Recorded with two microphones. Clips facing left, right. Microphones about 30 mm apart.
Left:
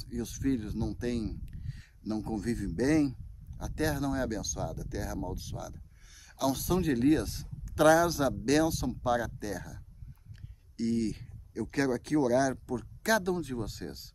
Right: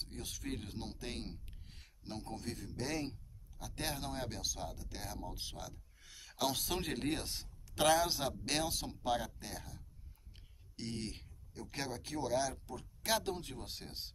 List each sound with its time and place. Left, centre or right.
0.0 s speech: right
1.5 s a sound: centre
2.8 s speech: centre
3.5 s speech: centre; by 6.9 s right
6.9 s speech: centre
10.8 s speech: centre